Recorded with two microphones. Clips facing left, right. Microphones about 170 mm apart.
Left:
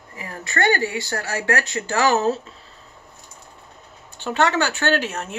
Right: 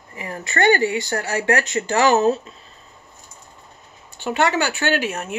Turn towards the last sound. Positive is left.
turn(degrees=-10)  # may be behind; listen again after turning